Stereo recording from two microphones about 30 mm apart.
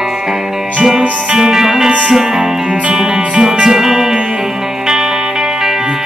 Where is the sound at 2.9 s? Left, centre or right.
Right.